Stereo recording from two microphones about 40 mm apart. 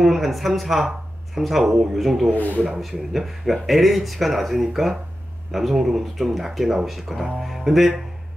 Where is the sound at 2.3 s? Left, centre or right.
Left.